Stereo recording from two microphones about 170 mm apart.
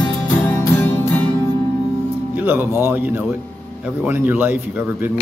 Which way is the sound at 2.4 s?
10° right (ahead or behind).